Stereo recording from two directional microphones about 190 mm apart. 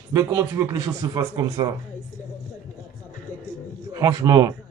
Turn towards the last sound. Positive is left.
turn(degrees=-20)  # may be behind; listen again after turning